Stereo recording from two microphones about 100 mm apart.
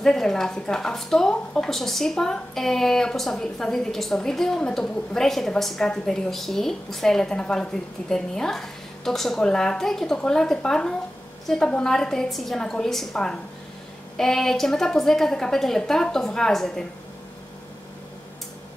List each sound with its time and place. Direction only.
0.0 s a woman's voice: 5° left (ahead or behind)